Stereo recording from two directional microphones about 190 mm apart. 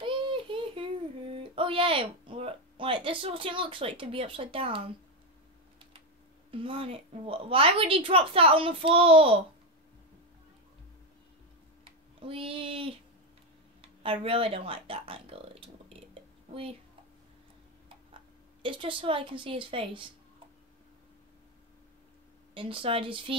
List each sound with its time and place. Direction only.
0.0 s child singing: 25° right (ahead or behind)
1.3 s speech: 30° right (ahead or behind)
6.5 s a woman's voice: 30° right (ahead or behind)
12.2 s a woman's voice: 30° right (ahead or behind)
18.6 s a woman's voice: 25° right (ahead or behind)
22.5 s a woman's voice: 25° right (ahead or behind)